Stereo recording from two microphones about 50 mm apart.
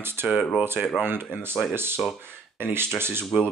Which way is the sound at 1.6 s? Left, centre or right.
Centre.